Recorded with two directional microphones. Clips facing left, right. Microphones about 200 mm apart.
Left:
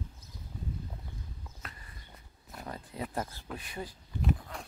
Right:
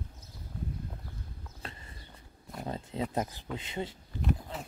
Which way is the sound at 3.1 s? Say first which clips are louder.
Right 3 dB; 20° right (ahead or behind).